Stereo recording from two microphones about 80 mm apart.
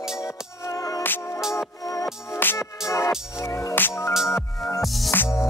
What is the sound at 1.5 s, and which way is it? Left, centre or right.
Music, left.